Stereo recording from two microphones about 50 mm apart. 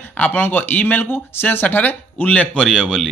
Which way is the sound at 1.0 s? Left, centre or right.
Left.